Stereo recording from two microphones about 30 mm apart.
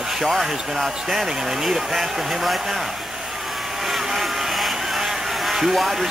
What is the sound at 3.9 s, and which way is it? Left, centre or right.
Vehicle, centre.